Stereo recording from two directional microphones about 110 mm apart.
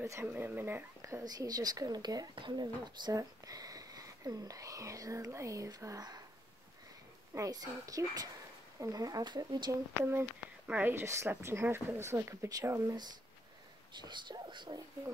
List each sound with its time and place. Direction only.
0.0 s speech: 25° right (ahead or behind)
1.2 s speech: 35° right (ahead or behind)
7.3 s speech: 35° right (ahead or behind)
10.7 s speech: 15° right (ahead or behind)
13.9 s speech: 45° right (ahead or behind)